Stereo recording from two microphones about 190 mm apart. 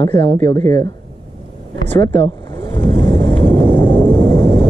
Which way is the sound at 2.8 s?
15° left (ahead or behind).